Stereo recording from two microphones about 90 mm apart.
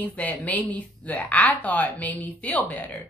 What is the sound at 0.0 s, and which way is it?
A woman's voice, 20° left (ahead or behind).